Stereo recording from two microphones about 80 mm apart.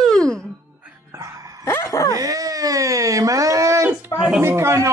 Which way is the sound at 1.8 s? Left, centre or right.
Left.